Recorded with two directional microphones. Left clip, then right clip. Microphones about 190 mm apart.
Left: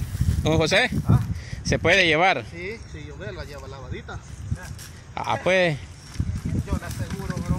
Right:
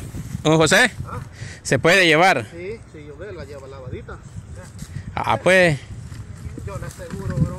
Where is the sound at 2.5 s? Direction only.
5° left (ahead or behind).